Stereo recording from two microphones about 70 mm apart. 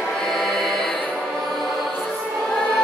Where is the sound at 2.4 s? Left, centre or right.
Centre.